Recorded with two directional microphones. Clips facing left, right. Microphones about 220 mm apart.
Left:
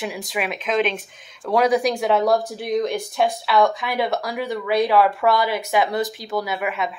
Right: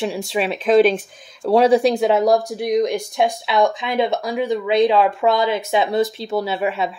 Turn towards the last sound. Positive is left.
turn(degrees=-30)  # may be behind; listen again after turning